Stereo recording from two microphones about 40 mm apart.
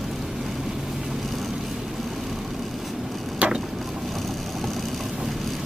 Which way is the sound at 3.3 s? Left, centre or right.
Right.